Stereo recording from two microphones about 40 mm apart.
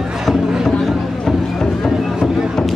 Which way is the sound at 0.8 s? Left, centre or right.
Centre.